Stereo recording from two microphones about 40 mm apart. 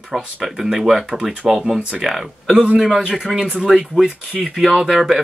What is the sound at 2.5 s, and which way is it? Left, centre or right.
Speech, right.